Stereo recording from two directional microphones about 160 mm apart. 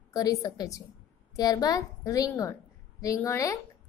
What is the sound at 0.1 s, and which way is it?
A woman's voice, 20° left (ahead or behind).